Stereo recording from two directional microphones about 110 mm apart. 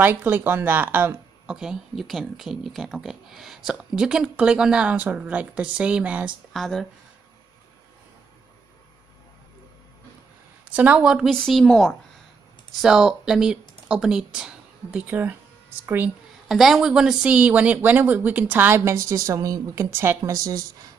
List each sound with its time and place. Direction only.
0.0 s speech: 15° right (ahead or behind)
1.5 s speech: 5° right (ahead or behind)
6.5 s a woman's voice: centre (ahead or behind)
10.8 s a woman's voice: 10° right (ahead or behind); by 11.9 s 5° left (ahead or behind)
12.8 s speech: 5° right (ahead or behind)
16.4 s speech: centre (ahead or behind); by 20.5 s 30° right (ahead or behind)